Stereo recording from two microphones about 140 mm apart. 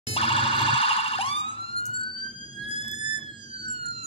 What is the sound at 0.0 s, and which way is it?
Car alarm, 45° left (ahead or behind).